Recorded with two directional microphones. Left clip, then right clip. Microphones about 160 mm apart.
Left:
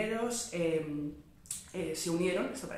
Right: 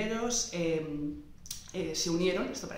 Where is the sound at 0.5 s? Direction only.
5° right (ahead or behind).